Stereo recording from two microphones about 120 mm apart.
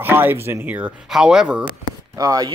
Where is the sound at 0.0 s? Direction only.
15° right (ahead or behind).